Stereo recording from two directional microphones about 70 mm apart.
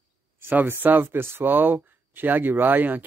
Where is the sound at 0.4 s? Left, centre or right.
Right.